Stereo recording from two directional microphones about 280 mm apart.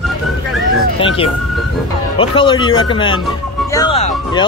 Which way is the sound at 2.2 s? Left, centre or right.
Centre.